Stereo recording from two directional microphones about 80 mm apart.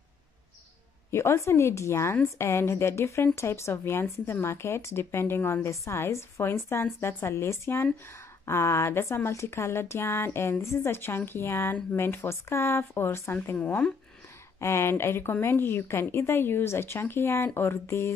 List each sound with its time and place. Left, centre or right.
1.1 s speech: left
13.6 s speech: centre
14.6 s speech: left